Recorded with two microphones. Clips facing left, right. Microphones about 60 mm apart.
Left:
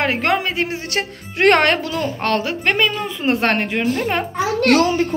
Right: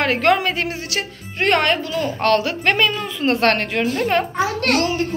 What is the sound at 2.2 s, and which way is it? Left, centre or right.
A woman's voice, left.